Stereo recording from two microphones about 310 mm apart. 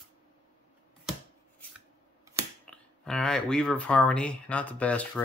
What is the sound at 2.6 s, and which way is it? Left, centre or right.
Speech, centre.